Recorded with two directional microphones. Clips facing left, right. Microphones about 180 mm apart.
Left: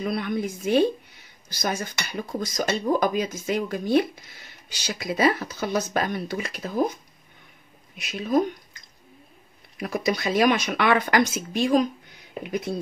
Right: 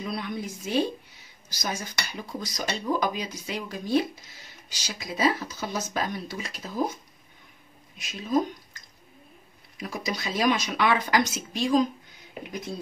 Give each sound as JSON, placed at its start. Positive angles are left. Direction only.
{"t": 0.0, "sound": "a woman's voice", "side_deg": 55}
{"t": 8.0, "sound": "speech", "side_deg": 65}
{"t": 9.8, "sound": "speech", "side_deg": 60}